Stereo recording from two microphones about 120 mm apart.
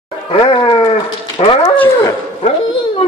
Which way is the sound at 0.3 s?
45° left (ahead or behind).